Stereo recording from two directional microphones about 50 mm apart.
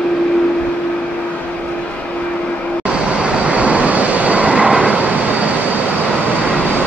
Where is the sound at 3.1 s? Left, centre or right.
Right.